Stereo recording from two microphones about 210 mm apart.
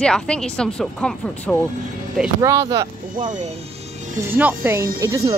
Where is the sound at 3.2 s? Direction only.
35° right (ahead or behind).